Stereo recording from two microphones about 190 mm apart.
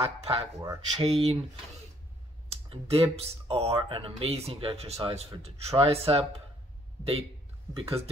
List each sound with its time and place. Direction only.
0.0 s speech: 30° right (ahead or behind)
0.6 s speech: 20° right (ahead or behind)
1.0 s speech: 35° right (ahead or behind)
2.7 s speech: 30° right (ahead or behind)
7.7 s speech: 30° right (ahead or behind)